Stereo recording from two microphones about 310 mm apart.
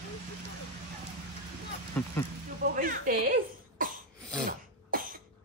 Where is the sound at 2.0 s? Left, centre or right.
Centre.